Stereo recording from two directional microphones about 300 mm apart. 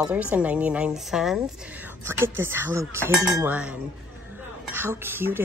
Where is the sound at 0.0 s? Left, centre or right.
Centre.